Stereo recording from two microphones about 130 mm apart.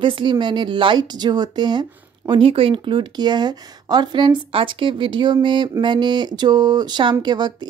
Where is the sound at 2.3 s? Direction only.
45° right (ahead or behind).